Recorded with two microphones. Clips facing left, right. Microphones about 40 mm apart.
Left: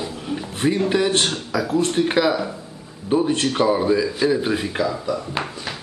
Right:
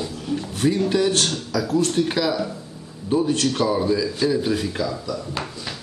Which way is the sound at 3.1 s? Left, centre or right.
Left.